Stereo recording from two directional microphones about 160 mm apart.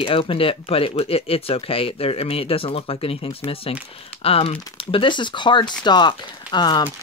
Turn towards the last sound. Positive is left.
turn(degrees=25)  # may be behind; listen again after turning